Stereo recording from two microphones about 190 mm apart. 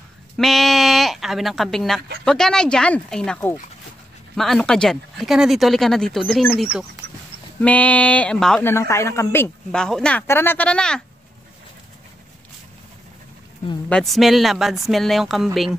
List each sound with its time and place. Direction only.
0.4 s speech: centre (ahead or behind)
13.8 s speech: 5° left (ahead or behind)